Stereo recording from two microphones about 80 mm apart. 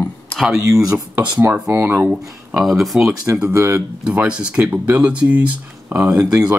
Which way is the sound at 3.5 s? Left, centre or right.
Right.